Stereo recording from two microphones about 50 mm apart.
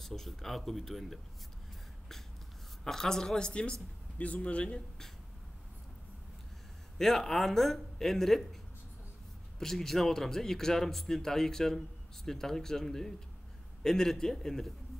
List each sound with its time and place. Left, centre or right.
0.0 s speech: centre
2.8 s a man's voice: centre
7.0 s a man's voice: centre
9.6 s a man's voice: centre